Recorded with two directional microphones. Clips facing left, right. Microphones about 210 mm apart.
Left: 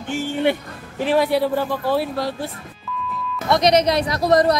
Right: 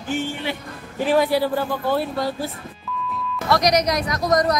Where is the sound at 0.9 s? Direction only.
Centre (ahead or behind).